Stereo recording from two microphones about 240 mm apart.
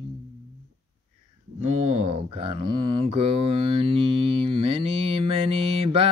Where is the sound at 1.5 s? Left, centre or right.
Right.